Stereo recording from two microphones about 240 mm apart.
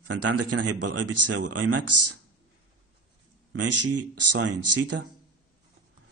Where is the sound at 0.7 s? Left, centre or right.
Right.